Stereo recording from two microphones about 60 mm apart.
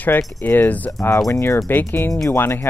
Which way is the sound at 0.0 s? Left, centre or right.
Left.